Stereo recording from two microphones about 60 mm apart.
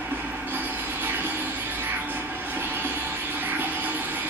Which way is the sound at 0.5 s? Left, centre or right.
Right.